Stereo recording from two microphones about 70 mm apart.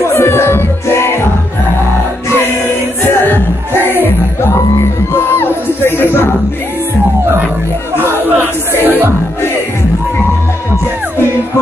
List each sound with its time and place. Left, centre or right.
0.0 s music: left
2.2 s music: left
3.7 s music: right
5.1 s crowd: left
8.2 s music: right